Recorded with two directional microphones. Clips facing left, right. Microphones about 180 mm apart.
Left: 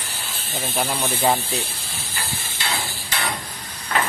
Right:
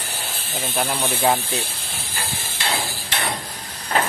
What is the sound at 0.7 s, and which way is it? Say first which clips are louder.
Speech: right 1 dB; centre (ahead or behind).